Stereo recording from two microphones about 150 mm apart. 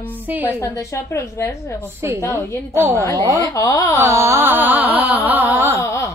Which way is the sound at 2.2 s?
20° left (ahead or behind).